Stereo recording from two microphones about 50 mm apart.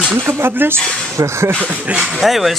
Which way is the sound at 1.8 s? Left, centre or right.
Right.